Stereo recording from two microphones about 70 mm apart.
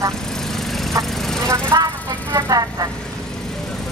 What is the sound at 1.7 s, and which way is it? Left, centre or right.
Speech, right.